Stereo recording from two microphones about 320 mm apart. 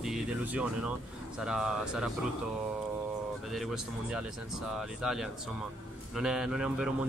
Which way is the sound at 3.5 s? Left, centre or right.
Centre.